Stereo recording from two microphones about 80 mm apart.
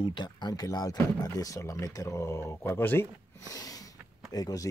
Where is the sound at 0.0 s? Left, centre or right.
Left.